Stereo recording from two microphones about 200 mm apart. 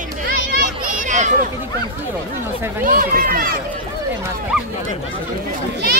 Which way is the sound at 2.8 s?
45° right (ahead or behind).